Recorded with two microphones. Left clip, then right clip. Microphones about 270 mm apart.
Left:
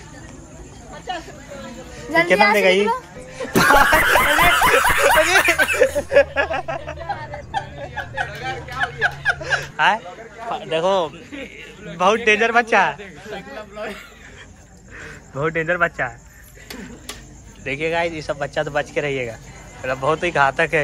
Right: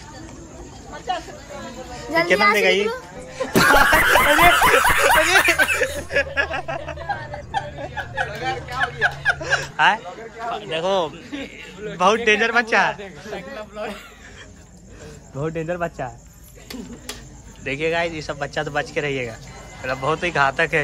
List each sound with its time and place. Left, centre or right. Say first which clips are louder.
2.0 s speech: left 3 dB; centre
3.5 s snicker: left 1 dB; centre
7.9 s a sound: even; centre
8.3 s a sound: right 2 dB; centre
8.7 s speech: left 1 dB; centre
12.3 s speech: left 2 dB; centre
15.3 s speech: left 6 dB; centre
16.6 s a sound: even; centre
17.6 s speech: left 1 dB; centre